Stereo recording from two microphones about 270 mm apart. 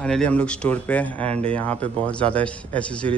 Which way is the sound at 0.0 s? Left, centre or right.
Centre.